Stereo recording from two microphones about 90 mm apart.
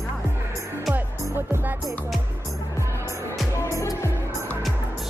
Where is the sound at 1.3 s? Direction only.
25° right (ahead or behind).